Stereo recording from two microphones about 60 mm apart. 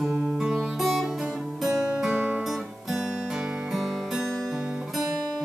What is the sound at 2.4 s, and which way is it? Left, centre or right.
Music, centre.